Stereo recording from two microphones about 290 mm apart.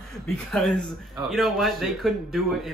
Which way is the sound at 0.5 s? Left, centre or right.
Centre.